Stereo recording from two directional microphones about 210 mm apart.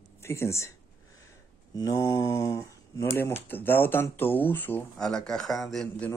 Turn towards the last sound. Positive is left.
turn(degrees=5)  # may be behind; listen again after turning